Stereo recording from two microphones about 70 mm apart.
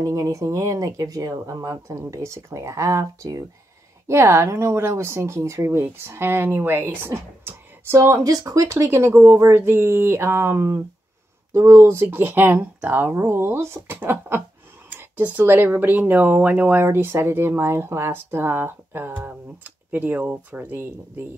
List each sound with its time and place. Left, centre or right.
0.0 s speech: right
4.1 s speech: right
8.2 s speech: right